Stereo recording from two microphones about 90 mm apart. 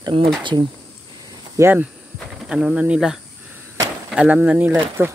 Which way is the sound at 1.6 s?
35° right (ahead or behind).